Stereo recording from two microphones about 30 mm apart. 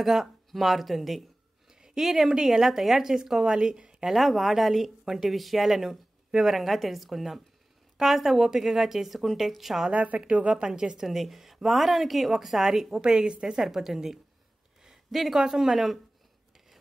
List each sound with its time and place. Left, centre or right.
0.0 s a woman's voice: centre
1.7 s a sound: centre
2.4 s a woman's voice: centre
3.5 s a woman's voice: right
4.0 s a woman's voice: centre
9.9 s a woman's voice: right
10.7 s a woman's voice: centre
11.1 s speech: centre
13.0 s a woman's voice: right
13.6 s a woman's voice: centre